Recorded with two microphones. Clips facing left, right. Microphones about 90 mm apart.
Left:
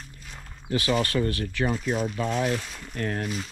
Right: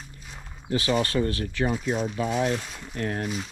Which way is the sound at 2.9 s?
35° right (ahead or behind).